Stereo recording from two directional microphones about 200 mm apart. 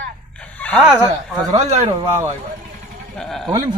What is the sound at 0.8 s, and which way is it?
Speech, 5° right (ahead or behind).